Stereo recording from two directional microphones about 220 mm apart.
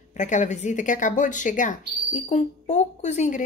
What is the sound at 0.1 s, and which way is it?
A woman's voice, 35° left (ahead or behind).